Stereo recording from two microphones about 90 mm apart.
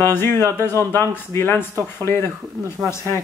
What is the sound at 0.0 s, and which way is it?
A man's voice, 25° left (ahead or behind).